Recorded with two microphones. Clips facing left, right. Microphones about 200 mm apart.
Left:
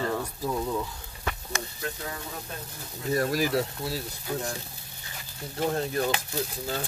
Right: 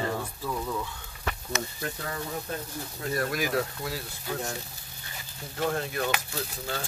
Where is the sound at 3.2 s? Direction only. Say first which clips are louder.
Left 2 dB; 35° left (ahead or behind).